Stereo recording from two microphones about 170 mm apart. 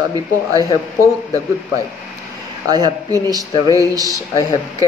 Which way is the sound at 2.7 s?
20° right (ahead or behind).